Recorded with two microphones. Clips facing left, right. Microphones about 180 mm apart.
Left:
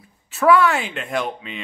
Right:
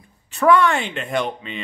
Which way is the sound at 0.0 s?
5° left (ahead or behind).